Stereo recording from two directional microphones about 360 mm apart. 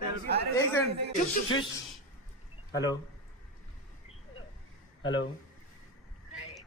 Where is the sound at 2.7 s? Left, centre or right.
Centre.